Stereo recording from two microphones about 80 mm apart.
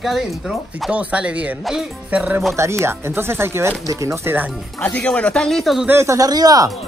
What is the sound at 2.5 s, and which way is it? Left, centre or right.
Speech, right.